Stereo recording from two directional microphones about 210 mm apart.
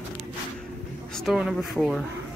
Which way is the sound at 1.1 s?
Centre (ahead or behind).